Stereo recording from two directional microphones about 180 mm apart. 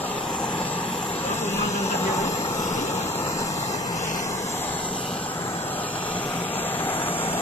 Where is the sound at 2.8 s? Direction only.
40° left (ahead or behind).